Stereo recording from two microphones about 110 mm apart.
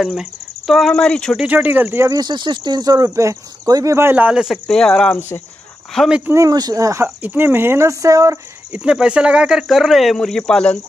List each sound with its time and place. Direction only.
0.0 s speech: 5° right (ahead or behind)
1.3 s speech: 10° right (ahead or behind)
2.0 s speech: 40° right (ahead or behind); by 4.6 s 5° right (ahead or behind)
4.6 s speech: 5° left (ahead or behind)
6.0 s speech: 10° right (ahead or behind)
6.3 s speech: 35° right (ahead or behind)
7.2 s speech: 15° right (ahead or behind)
8.7 s speech: 10° right (ahead or behind); by 10.8 s 10° left (ahead or behind)